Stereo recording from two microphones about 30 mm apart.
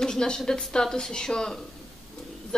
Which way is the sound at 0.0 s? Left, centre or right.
Left.